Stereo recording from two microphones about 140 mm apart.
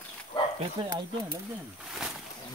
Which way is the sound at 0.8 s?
35° right (ahead or behind).